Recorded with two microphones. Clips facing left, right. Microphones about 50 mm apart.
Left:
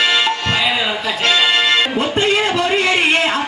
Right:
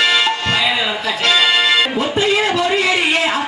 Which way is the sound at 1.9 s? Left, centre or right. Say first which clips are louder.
Even; centre.